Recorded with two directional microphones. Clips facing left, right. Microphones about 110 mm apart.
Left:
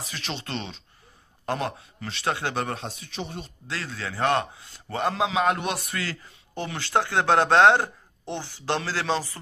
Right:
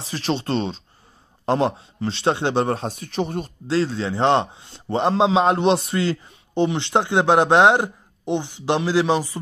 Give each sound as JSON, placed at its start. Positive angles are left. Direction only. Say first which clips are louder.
{"t": 0.0, "sound": "a man's voice", "louder": "right 10 dB", "side_deg": -35}
{"t": 3.6, "sound": "a man's voice", "louder": "right 13 dB", "side_deg": -30}